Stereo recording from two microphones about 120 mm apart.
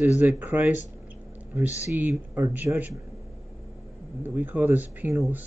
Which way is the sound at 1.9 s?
15° right (ahead or behind).